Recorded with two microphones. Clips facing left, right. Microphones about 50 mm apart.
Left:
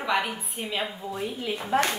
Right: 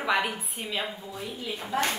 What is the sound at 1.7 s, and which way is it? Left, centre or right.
Speech, left.